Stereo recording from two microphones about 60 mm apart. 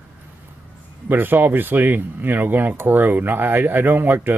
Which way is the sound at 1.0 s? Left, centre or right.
Right.